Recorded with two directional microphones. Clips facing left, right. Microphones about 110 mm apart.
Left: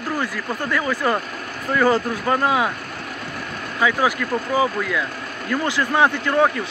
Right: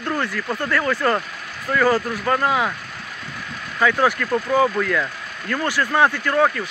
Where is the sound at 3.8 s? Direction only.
10° left (ahead or behind).